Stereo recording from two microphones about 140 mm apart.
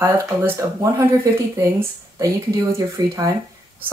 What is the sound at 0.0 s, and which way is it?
Speech, 20° right (ahead or behind).